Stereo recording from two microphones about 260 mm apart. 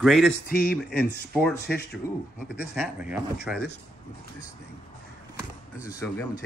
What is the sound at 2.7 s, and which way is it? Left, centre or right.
Speech, centre.